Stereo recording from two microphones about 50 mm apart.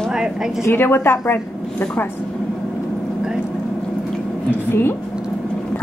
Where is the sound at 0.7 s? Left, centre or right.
Left.